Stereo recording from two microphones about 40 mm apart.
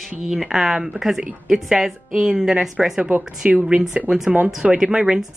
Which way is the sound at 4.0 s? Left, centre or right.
Centre.